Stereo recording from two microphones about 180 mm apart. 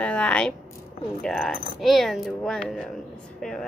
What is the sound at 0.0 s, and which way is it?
A woman's voice, 5° left (ahead or behind).